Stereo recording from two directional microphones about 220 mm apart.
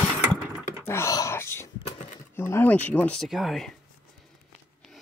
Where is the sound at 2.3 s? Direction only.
10° left (ahead or behind).